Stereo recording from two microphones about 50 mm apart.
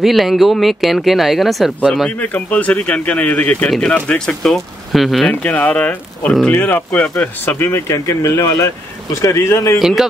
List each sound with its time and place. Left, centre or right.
0.0 s speech: centre
2.0 s speech: left
4.5 s speech: centre
5.3 s speech: left
7.4 s speech: left
7.9 s speech: left
9.8 s a man's voice: centre